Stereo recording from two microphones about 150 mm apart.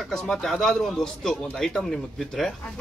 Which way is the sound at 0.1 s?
5° left (ahead or behind).